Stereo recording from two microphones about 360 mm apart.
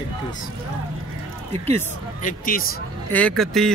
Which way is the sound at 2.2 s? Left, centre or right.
Left.